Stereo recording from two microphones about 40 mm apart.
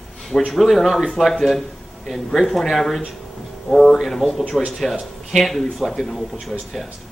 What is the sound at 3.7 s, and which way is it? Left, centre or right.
Speech, centre.